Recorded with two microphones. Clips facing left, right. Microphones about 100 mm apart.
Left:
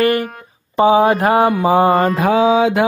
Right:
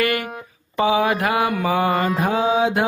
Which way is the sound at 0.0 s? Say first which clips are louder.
Left 6 dB; 35° left (ahead or behind).